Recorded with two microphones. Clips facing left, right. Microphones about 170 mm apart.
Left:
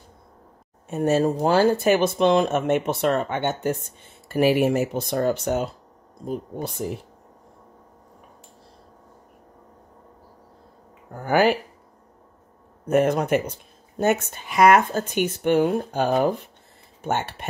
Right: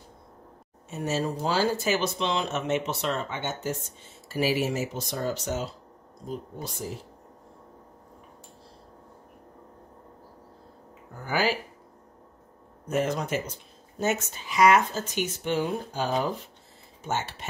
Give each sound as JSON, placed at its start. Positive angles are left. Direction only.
{"t": 0.8, "sound": "speech", "side_deg": 55}
{"t": 11.1, "sound": "speech", "side_deg": 55}
{"t": 12.8, "sound": "speech", "side_deg": 55}